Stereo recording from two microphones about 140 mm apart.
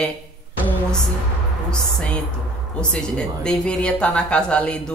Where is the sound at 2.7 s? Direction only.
5° left (ahead or behind).